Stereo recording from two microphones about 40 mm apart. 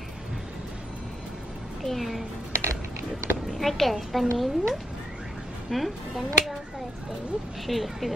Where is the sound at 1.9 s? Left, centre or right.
Centre.